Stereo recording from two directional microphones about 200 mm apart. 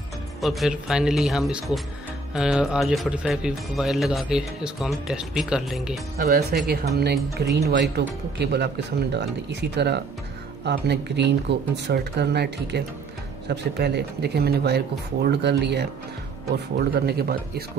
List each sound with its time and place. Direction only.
0.4 s speech: centre (ahead or behind)
6.1 s speech: 50° right (ahead or behind)